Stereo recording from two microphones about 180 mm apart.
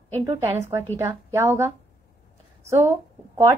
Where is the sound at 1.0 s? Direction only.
15° right (ahead or behind).